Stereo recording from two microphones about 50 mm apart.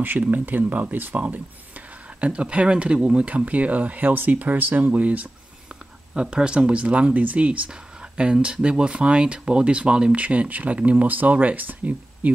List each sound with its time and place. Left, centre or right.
0.2 s speech: right
2.1 s speech: right
6.1 s speech: centre; by 12.3 s right